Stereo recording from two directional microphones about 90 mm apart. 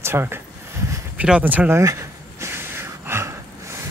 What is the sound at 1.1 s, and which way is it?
Speech, 15° right (ahead or behind).